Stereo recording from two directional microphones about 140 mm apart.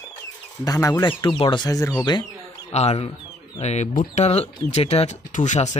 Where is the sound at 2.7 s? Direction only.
50° left (ahead or behind).